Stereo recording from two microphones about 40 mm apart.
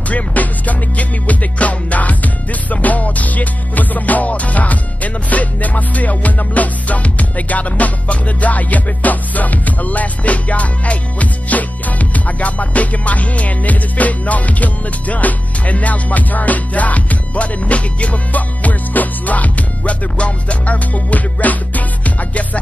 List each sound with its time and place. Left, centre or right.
0.1 s music: left